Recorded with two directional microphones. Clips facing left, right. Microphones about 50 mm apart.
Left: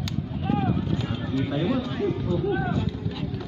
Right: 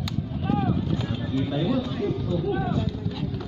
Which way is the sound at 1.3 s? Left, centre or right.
Left.